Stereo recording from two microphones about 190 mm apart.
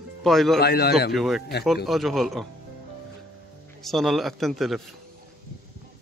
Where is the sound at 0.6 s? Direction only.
60° left (ahead or behind).